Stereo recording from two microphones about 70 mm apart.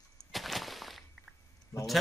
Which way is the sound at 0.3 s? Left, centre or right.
Centre.